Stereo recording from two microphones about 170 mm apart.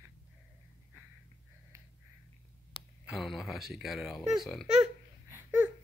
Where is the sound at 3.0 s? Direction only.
Centre (ahead or behind).